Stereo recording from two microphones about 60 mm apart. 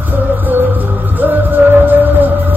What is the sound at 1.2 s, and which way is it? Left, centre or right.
Music, right.